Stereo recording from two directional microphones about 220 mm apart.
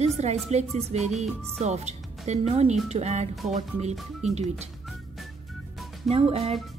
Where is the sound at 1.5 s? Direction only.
30° right (ahead or behind).